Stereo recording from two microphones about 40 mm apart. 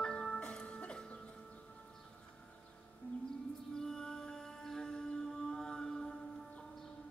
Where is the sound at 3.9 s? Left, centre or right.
Centre.